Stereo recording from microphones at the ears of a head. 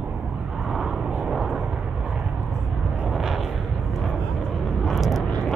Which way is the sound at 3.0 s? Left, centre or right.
Right.